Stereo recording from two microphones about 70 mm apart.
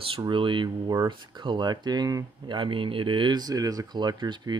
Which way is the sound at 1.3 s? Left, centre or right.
Right.